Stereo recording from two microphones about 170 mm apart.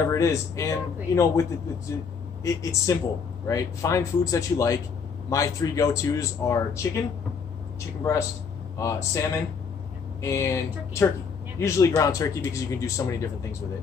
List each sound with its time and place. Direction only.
0.1 s a man's voice: 20° left (ahead or behind)
8.0 s a man's voice: 15° left (ahead or behind)
10.2 s a man's voice: 15° left (ahead or behind)